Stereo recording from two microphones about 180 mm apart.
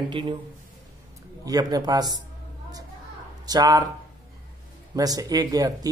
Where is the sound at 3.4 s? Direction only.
20° right (ahead or behind).